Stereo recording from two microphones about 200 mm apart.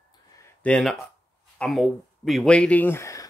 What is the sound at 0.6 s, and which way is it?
Speech, 5° left (ahead or behind).